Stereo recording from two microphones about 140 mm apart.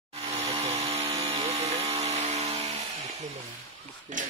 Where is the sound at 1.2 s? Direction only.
45° right (ahead or behind).